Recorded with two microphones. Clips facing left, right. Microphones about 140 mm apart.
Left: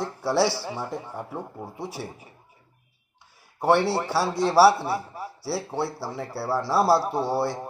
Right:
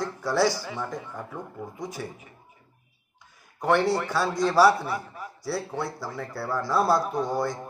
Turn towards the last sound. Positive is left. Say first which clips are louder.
# left 2 dB
turn(degrees=30)  # may be behind; listen again after turning